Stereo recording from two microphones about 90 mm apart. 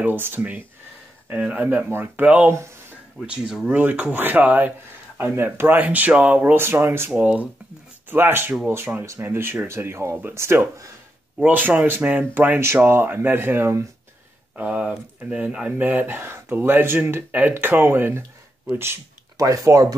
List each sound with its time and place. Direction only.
0.0 s speech: 20° right (ahead or behind)
7.1 s speech: 10° right (ahead or behind)
8.1 s speech: 25° right (ahead or behind)
14.6 s speech: 15° right (ahead or behind)
19.3 s speech: 40° right (ahead or behind)